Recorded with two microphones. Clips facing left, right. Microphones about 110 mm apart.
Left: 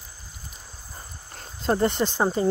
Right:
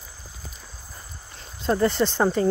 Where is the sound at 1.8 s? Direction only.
15° left (ahead or behind).